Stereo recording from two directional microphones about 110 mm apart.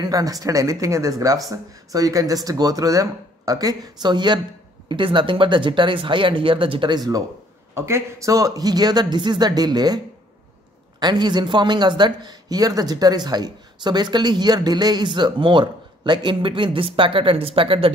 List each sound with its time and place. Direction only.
0.0 s speech: 35° right (ahead or behind)
7.7 s speech: 25° right (ahead or behind)
11.0 s speech: 40° right (ahead or behind); by 17.9 s 55° right (ahead or behind)